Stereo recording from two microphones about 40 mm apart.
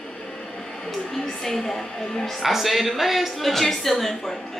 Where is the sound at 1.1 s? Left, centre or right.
Centre.